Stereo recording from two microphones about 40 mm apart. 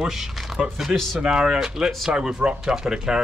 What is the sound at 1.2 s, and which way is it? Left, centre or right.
Speech, centre.